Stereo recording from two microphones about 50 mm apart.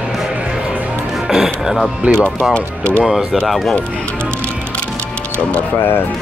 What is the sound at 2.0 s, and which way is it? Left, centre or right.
Speech, right.